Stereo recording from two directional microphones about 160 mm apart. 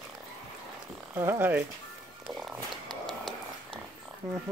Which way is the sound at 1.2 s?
15° right (ahead or behind).